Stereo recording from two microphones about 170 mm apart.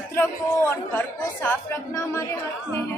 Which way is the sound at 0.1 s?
10° left (ahead or behind).